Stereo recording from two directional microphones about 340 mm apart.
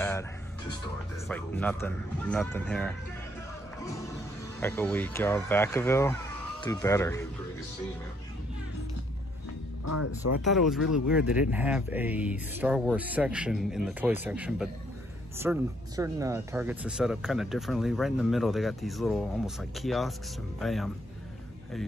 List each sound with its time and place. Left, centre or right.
0.0 s music: centre
1.3 s speech: centre
3.8 s music: centre
4.6 s speech: centre
9.8 s speech: left
10.4 s speech: centre